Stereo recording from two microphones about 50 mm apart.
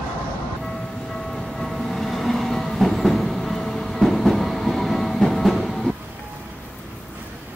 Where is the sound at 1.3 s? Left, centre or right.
Centre.